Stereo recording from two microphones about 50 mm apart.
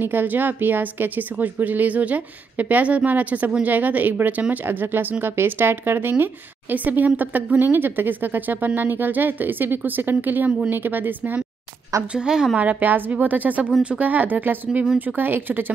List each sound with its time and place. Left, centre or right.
0.0 s a woman's voice: right
12.1 s a woman's voice: centre
12.5 s speech: right